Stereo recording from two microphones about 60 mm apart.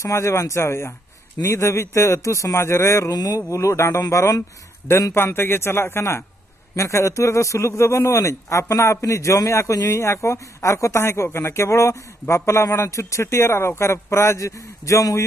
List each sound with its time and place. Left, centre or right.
0.0 s a man's voice: left
5.1 s a man's voice: left
9.9 s speech: left